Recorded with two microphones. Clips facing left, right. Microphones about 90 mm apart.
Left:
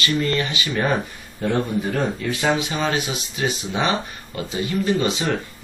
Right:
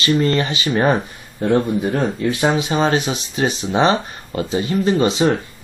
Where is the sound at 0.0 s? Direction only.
30° right (ahead or behind).